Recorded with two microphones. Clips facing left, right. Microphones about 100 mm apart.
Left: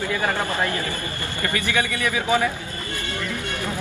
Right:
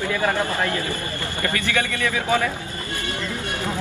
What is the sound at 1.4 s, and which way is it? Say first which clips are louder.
A man's voice: left 1 dB; 20° left (ahead or behind).